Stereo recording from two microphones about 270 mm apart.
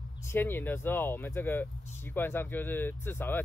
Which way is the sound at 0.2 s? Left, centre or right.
Centre.